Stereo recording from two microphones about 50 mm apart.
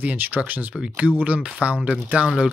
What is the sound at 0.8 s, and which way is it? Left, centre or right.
Speech, centre.